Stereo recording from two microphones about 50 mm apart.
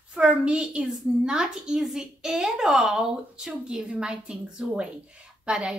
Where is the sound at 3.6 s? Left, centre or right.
Right.